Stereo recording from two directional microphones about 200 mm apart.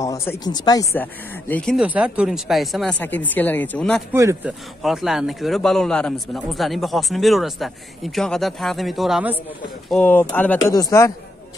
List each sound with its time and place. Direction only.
0.0 s speech: 15° left (ahead or behind)
1.5 s speech: 5° left (ahead or behind)
4.1 s speech: 15° right (ahead or behind)
9.8 s speech: 5° left (ahead or behind)